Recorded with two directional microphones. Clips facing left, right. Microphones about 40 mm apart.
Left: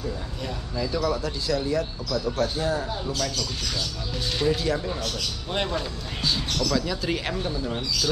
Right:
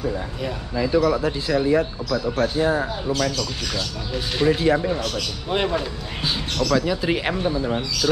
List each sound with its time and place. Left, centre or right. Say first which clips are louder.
0.7 s speech: right 7 dB; right
5.5 s speech: right 6 dB; centre